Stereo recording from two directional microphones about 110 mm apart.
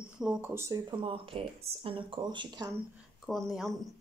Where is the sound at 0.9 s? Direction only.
50° right (ahead or behind).